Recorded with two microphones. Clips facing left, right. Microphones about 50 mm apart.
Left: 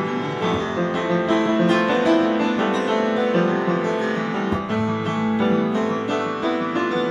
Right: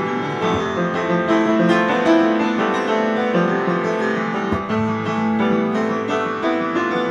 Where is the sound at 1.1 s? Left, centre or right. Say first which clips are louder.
Right 3 dB; right.